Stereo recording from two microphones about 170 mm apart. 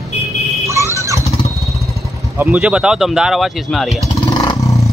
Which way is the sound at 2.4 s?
5° right (ahead or behind).